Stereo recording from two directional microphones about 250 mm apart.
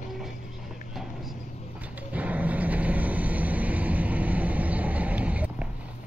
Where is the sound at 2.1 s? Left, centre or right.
Centre.